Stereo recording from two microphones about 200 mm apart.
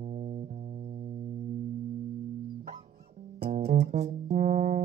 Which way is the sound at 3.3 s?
50° right (ahead or behind).